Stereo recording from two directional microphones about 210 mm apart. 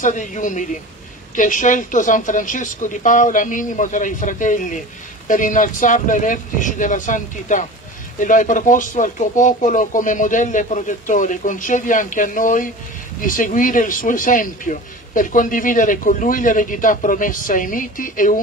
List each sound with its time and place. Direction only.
0.0 s speech: 35° left (ahead or behind)